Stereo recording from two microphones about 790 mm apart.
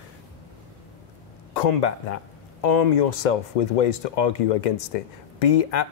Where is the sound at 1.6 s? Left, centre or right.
Left.